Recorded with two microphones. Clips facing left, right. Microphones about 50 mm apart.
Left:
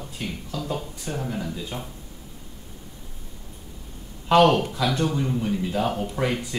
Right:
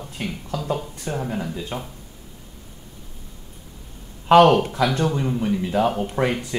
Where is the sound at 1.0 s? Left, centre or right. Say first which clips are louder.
Right 4 dB; centre.